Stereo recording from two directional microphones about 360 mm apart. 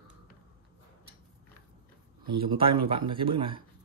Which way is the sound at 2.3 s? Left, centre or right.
Centre.